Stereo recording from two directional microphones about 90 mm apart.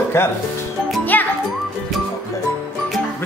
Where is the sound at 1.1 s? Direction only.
20° left (ahead or behind).